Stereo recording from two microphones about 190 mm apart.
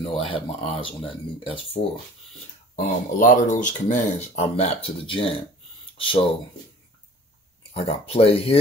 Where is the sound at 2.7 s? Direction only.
40° left (ahead or behind).